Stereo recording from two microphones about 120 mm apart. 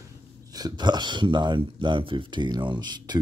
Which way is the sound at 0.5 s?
35° right (ahead or behind).